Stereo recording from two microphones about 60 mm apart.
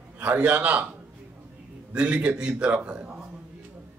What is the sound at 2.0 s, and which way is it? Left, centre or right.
A man's voice, right.